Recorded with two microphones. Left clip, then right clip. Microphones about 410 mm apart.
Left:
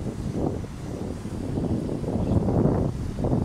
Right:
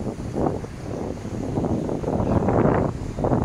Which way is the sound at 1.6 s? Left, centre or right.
Right.